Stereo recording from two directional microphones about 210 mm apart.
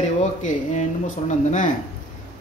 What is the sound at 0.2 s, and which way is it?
Speech, 35° left (ahead or behind).